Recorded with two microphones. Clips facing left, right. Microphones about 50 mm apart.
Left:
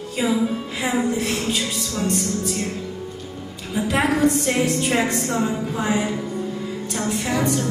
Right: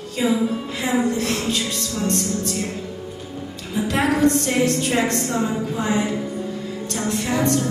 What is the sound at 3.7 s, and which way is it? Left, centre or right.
A woman's voice, centre.